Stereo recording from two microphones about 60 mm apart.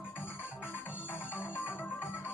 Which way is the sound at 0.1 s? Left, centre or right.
Left.